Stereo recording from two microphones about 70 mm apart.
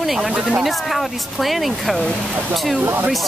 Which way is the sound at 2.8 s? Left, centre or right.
Right.